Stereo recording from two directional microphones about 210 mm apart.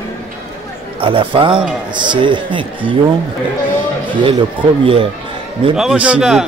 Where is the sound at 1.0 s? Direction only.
25° right (ahead or behind).